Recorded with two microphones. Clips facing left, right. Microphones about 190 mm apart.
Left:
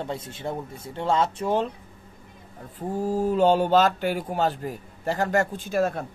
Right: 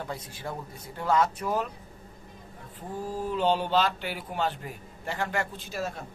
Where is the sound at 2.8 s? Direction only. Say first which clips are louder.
Left 8 dB; 45° left (ahead or behind).